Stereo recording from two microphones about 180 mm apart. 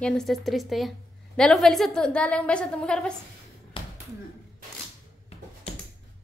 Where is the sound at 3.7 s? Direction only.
30° left (ahead or behind).